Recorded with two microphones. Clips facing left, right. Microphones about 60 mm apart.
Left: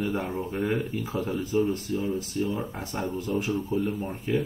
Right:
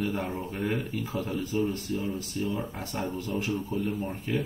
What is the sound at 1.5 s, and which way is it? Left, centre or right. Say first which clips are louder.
Speech: left 4 dB; centre.